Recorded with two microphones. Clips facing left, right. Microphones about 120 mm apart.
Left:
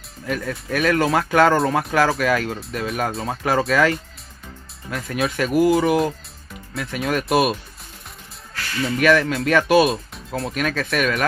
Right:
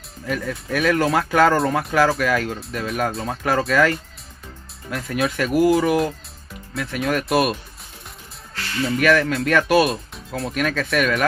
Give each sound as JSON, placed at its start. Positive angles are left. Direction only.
{"t": 0.3, "sound": "speech", "side_deg": 0}
{"t": 8.8, "sound": "speech", "side_deg": 0}